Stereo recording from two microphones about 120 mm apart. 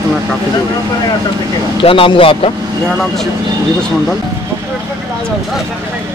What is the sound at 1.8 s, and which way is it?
Speech, 45° left (ahead or behind).